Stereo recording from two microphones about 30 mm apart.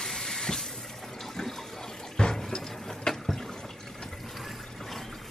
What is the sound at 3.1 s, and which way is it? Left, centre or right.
Water, left.